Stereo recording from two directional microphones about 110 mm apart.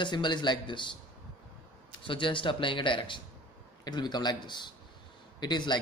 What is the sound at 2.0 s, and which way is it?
Speech, 50° left (ahead or behind).